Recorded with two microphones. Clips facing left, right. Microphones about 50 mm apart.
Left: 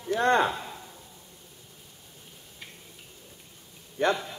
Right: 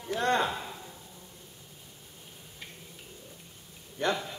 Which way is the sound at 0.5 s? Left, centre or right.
Centre.